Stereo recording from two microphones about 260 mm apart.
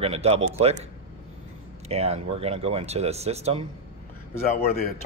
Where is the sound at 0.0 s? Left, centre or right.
Right.